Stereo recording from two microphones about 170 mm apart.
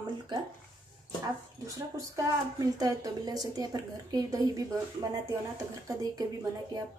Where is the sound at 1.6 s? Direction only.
20° right (ahead or behind).